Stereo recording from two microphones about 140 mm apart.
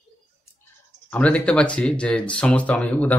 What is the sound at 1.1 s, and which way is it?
Speech, 10° left (ahead or behind).